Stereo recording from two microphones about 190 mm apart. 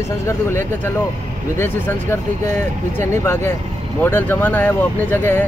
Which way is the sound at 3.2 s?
15° left (ahead or behind).